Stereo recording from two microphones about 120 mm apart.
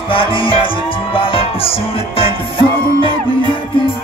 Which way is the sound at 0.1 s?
45° left (ahead or behind).